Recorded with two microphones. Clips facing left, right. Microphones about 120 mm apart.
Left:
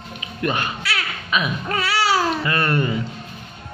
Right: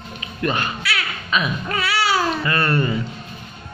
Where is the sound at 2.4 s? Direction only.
20° left (ahead or behind).